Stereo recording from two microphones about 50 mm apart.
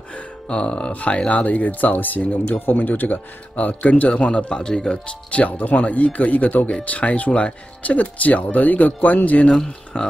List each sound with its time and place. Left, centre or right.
0.1 s speech: left
9.5 s speech: centre